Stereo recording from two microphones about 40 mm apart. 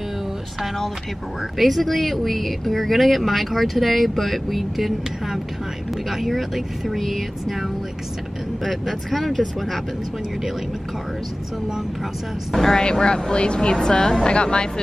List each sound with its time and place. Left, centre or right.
1.6 s speech: centre
12.5 s a woman's voice: centre